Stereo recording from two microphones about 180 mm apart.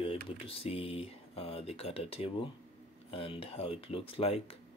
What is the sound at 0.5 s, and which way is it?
Speech, 30° left (ahead or behind).